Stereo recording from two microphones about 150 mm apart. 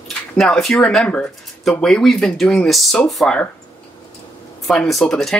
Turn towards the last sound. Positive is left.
turn(degrees=0)  # may be behind; listen again after turning